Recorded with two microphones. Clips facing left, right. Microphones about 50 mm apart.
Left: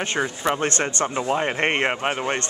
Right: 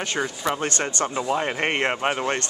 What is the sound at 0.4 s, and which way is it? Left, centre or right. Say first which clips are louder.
Speech: left 2 dB; left.